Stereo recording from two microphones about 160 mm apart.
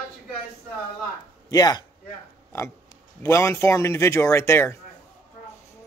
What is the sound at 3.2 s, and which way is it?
Speech, 15° left (ahead or behind).